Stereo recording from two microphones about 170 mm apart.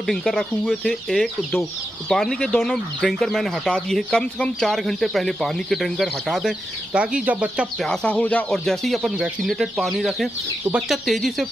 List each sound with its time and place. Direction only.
0.0 s speech: centre (ahead or behind)
7.9 s speech: 5° left (ahead or behind)